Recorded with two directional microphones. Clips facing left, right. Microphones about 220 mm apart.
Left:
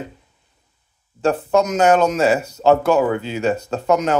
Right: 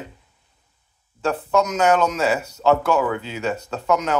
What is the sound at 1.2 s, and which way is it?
Speech, 50° left (ahead or behind).